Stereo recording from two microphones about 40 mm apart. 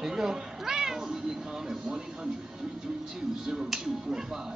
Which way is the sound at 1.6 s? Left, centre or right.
Centre.